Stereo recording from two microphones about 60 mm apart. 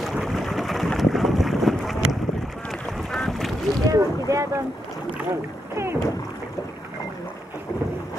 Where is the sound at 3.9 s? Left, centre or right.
Right.